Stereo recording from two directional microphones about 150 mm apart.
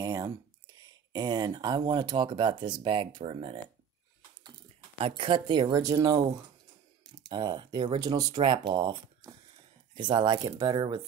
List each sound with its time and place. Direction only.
0.0 s a sound: 25° right (ahead or behind)
1.1 s speech: 25° right (ahead or behind)
5.0 s speech: 35° right (ahead or behind)
7.2 s speech: 30° right (ahead or behind)
9.9 s speech: 30° right (ahead or behind)